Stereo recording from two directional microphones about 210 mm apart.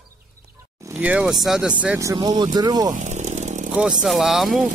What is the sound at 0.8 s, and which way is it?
Speech, 10° right (ahead or behind).